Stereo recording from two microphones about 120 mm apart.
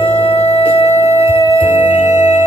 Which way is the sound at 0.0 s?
50° left (ahead or behind).